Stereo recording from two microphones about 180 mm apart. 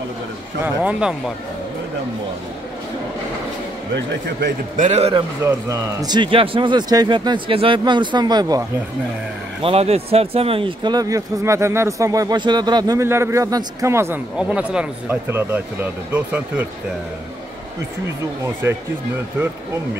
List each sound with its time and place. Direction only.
0.8 s speech: 5° right (ahead or behind)
4.7 s speech: 40° right (ahead or behind)
5.1 s a man's voice: 20° right (ahead or behind)
9.6 s a man's voice: 35° right (ahead or behind); by 16.6 s 10° right (ahead or behind)
18.4 s speech: 15° right (ahead or behind)